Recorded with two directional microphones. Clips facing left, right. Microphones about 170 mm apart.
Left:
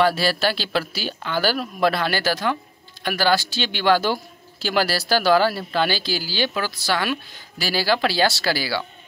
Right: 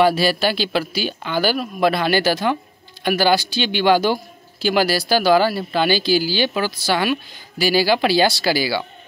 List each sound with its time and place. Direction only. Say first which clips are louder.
0.0 s a man's voice: right 3 dB; centre (ahead or behind)